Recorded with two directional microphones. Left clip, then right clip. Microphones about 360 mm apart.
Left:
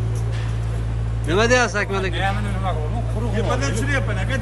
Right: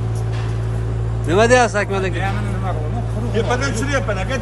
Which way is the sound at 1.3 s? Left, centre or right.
Centre.